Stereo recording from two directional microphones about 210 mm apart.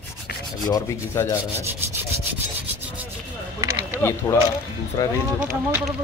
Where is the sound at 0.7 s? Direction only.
20° left (ahead or behind).